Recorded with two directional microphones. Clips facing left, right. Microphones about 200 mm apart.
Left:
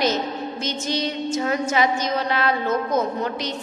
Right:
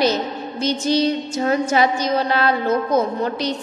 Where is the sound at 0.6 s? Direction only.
35° right (ahead or behind).